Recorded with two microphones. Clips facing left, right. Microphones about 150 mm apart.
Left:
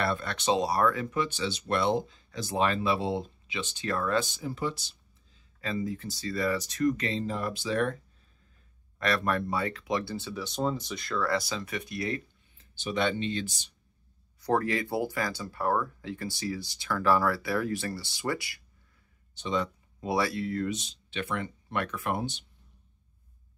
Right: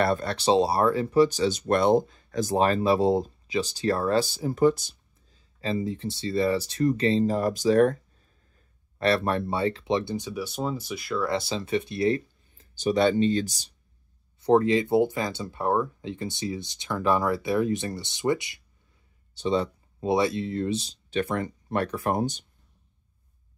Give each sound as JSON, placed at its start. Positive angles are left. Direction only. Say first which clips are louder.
{"t": 0.0, "sound": "speech", "louder": "right 6 dB", "side_deg": -40}
{"t": 5.6, "sound": "speech", "louder": "right 4 dB", "side_deg": -25}
{"t": 8.9, "sound": "speech", "louder": "right 4 dB", "side_deg": -30}
{"t": 11.2, "sound": "speech", "louder": "right 2 dB", "side_deg": -25}
{"t": 14.4, "sound": "speech", "louder": "right 7 dB", "side_deg": -20}
{"t": 19.3, "sound": "speech", "louder": "right 5 dB", "side_deg": -35}